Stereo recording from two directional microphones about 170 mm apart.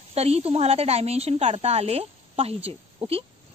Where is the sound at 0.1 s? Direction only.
35° right (ahead or behind).